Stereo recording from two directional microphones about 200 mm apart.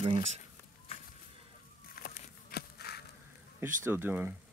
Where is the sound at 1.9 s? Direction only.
50° left (ahead or behind).